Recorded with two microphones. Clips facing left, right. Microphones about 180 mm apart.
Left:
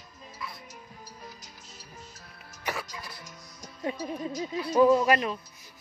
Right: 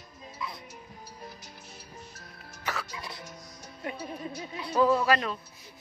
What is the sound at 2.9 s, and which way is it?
Speech, 25° right (ahead or behind).